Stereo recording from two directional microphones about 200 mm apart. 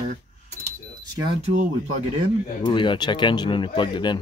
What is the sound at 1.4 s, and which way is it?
Speech, 35° right (ahead or behind).